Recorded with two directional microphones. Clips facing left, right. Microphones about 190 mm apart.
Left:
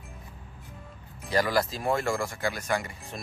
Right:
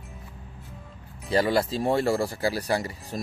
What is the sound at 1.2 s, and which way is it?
Speech, 30° right (ahead or behind).